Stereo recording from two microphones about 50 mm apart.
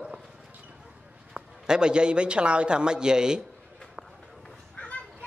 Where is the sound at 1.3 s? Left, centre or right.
Centre.